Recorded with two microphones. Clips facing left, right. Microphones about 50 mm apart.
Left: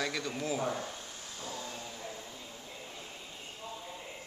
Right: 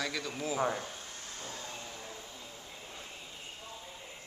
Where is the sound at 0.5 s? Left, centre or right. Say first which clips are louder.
Right 3 dB; right.